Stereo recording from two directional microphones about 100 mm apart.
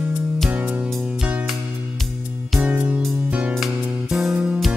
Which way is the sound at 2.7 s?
15° right (ahead or behind).